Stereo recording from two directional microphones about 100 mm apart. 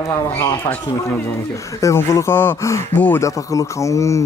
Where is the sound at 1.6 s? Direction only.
35° left (ahead or behind).